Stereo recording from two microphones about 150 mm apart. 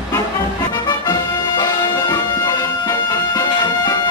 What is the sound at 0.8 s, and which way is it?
Music, 30° left (ahead or behind).